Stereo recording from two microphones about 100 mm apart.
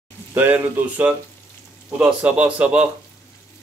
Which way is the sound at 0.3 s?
20° right (ahead or behind).